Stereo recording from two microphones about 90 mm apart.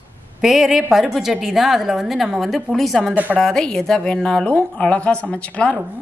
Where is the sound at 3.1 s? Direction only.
20° right (ahead or behind).